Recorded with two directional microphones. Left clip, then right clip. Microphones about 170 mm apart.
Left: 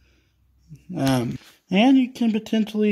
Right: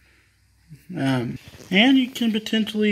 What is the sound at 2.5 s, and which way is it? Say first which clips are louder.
Speech: right 1 dB; 55° left (ahead or behind).